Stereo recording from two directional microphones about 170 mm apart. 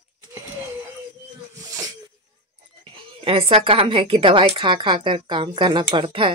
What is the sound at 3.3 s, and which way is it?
A woman's voice, 35° right (ahead or behind).